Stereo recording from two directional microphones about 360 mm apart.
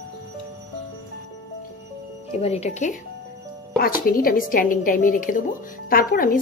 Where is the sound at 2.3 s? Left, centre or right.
Centre.